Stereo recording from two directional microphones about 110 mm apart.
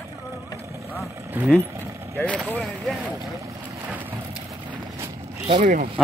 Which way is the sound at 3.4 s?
30° right (ahead or behind).